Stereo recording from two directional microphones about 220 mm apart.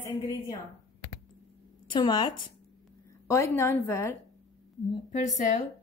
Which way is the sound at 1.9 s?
20° left (ahead or behind).